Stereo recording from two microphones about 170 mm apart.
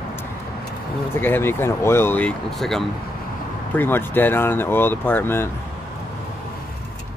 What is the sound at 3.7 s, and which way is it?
Speech, 10° left (ahead or behind).